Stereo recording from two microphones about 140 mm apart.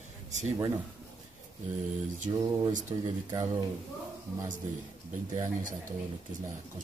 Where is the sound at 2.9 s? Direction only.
40° right (ahead or behind).